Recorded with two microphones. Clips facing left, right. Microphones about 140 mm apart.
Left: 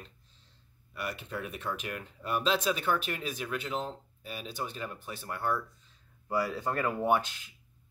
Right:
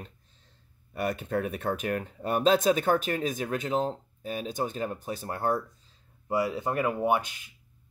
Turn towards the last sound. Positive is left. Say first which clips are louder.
# right 2 dB
turn(degrees=-10)  # may be behind; listen again after turning